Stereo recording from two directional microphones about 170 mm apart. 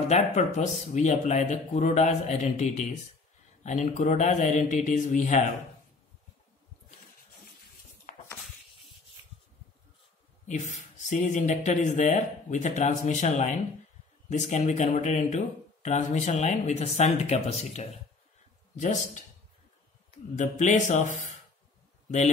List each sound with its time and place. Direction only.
0.1 s speech: 45° left (ahead or behind)
10.4 s speech: 45° left (ahead or behind)
20.3 s speech: 45° left (ahead or behind)